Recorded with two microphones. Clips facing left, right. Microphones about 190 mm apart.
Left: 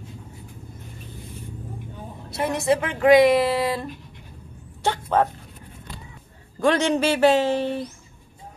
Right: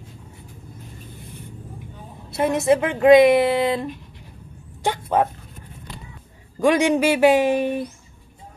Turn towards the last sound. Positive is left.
turn(degrees=-15)  # may be behind; listen again after turning